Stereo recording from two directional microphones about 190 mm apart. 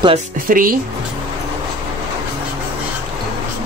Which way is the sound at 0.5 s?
50° right (ahead or behind).